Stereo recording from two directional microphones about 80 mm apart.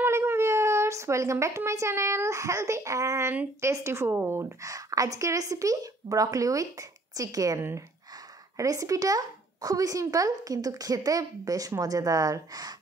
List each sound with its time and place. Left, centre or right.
0.0 s a woman's voice: right